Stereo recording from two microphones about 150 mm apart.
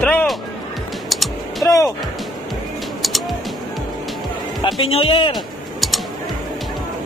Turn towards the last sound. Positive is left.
turn(degrees=0)  # may be behind; listen again after turning